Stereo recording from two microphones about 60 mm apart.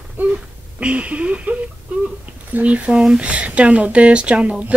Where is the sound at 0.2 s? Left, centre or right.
Right.